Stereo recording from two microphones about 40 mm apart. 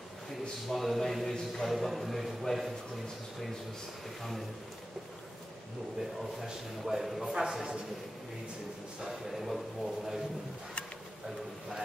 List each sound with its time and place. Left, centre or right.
0.7 s speech: centre
4.2 s speech: centre
6.8 s speech: centre
9.0 s speech: centre